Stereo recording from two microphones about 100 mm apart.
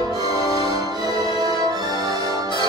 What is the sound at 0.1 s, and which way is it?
Music, 40° right (ahead or behind).